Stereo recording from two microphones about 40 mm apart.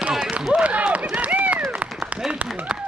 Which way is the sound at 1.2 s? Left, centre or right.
Right.